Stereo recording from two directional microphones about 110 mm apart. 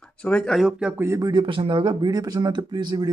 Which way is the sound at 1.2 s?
45° right (ahead or behind).